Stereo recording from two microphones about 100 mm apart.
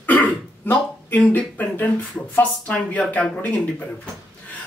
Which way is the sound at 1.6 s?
15° left (ahead or behind).